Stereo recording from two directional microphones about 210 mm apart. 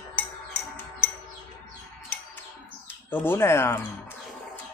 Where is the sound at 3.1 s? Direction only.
10° left (ahead or behind).